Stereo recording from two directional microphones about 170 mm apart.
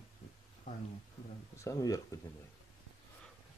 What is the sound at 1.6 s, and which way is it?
Speech, 20° left (ahead or behind).